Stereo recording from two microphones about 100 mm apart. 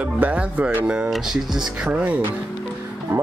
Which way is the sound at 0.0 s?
15° right (ahead or behind).